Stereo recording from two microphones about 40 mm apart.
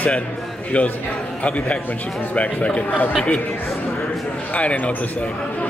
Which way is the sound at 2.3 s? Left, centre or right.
Left.